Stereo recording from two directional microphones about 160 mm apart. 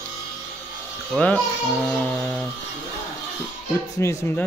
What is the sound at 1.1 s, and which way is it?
Speech, 5° left (ahead or behind).